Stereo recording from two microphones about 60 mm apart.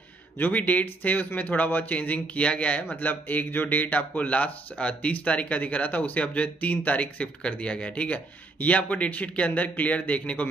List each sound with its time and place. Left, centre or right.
0.4 s speech: left
2.9 s speech: left